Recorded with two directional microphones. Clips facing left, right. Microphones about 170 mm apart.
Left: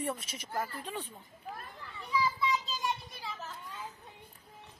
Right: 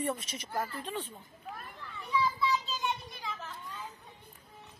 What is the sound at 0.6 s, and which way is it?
Speech, 10° left (ahead or behind).